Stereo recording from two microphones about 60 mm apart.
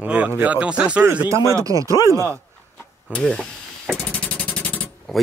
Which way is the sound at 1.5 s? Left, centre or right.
Right.